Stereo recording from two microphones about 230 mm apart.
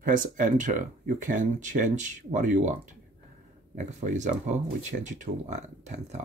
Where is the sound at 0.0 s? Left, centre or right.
Right.